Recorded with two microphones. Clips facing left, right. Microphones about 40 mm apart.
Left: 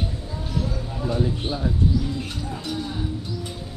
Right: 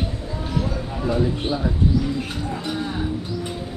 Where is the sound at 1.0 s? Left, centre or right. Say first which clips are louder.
Right 3 dB; right.